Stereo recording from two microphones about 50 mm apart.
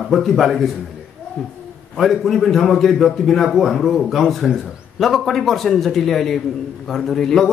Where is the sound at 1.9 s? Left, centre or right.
Centre.